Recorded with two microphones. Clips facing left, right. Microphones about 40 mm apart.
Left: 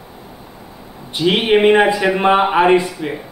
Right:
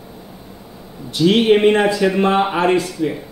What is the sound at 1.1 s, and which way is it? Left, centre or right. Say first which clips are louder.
Speech: right 1 dB; left.